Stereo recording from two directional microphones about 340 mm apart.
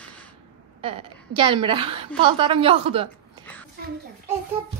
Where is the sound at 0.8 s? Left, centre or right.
Centre.